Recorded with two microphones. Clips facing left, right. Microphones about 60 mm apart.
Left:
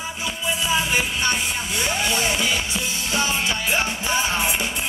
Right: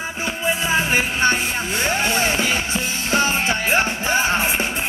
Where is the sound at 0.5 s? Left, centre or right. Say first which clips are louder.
Right 3 dB; right.